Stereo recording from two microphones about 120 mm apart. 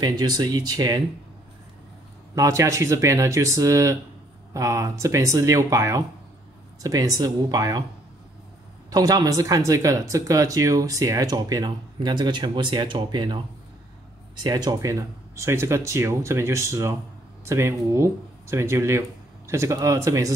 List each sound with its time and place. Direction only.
0.0 s speech: 35° right (ahead or behind)
2.3 s speech: 25° right (ahead or behind)
8.9 s speech: 30° right (ahead or behind)